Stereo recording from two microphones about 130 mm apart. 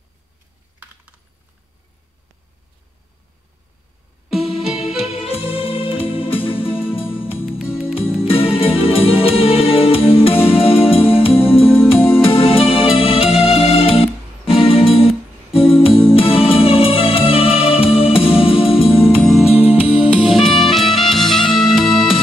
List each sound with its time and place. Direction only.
4.8 s music: 5° right (ahead or behind)
5.2 s music: 45° left (ahead or behind)
8.1 s music: 45° left (ahead or behind)
19.9 s music: 10° right (ahead or behind)